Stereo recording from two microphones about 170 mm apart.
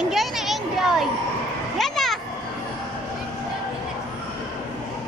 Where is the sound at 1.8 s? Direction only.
Centre (ahead or behind).